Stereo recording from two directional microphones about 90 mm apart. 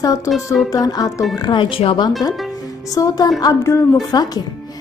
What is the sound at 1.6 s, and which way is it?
Speech, 85° left.